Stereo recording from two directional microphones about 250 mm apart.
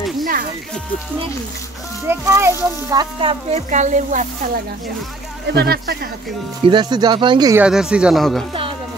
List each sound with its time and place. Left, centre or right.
0.2 s speech: right
2.0 s speech: centre; by 4.3 s right
5.5 s speech: right
6.6 s speech: centre
7.6 s speech: centre